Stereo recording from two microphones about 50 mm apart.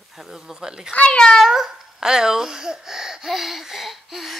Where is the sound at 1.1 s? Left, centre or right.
Centre.